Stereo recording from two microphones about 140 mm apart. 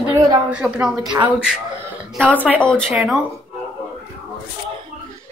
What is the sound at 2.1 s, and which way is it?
Speech, 10° left (ahead or behind).